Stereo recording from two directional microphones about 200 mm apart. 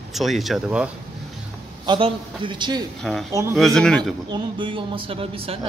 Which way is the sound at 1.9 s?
25° right (ahead or behind).